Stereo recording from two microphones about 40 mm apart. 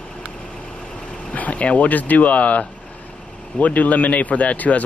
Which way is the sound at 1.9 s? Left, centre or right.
Left.